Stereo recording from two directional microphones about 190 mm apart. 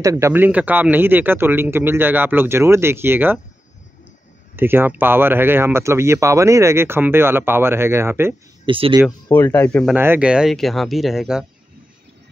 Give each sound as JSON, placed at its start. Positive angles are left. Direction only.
{"t": 0.0, "sound": "speech", "side_deg": -15}
{"t": 4.6, "sound": "speech", "side_deg": -10}
{"t": 8.6, "sound": "speech", "side_deg": -25}
{"t": 9.3, "sound": "speech", "side_deg": 10}
{"t": 9.9, "sound": "speech", "side_deg": -10}